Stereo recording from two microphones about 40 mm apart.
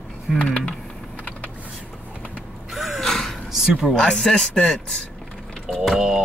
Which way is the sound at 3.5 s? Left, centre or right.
Centre.